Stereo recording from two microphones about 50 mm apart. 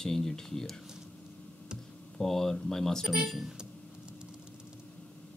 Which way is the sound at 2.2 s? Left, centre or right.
Centre.